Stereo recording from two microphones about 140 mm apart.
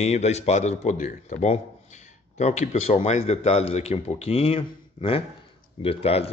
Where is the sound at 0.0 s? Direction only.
50° left (ahead or behind).